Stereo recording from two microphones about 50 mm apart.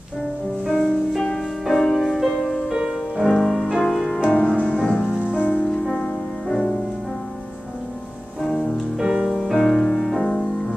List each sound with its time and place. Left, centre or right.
0.7 s music: centre
2.7 s music: centre
3.2 s music: centre
3.7 s music: centre
4.3 s music: left
5.4 s music: left
5.7 s music: centre
8.4 s music: centre
8.9 s music: centre